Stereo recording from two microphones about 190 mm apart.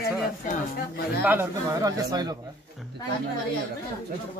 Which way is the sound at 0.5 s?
55° left (ahead or behind).